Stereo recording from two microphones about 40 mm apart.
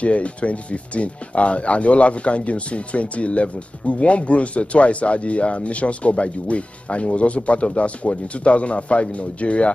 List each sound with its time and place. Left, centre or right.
0.0 s speech: left